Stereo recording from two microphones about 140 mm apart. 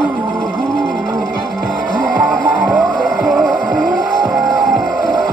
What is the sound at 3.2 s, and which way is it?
Music, 5° right (ahead or behind).